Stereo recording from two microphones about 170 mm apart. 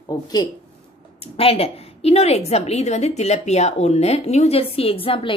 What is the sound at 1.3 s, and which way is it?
A woman's voice, 35° left (ahead or behind).